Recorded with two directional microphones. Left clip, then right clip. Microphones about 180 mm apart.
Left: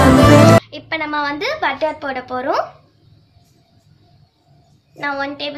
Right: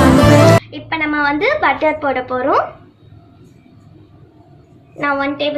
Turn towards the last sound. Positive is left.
turn(degrees=55)  # may be behind; listen again after turning